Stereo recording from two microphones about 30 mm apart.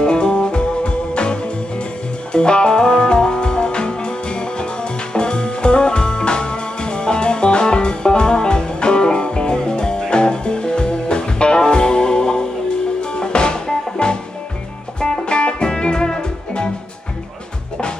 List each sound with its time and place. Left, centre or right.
0.0 s music: left